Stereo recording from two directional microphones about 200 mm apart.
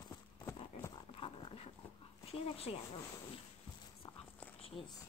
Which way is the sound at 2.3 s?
30° left (ahead or behind).